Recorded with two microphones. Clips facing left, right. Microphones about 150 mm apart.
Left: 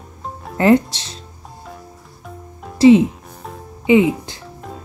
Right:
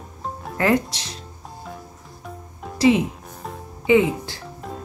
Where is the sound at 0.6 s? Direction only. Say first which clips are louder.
Left 7 dB; 25° left (ahead or behind).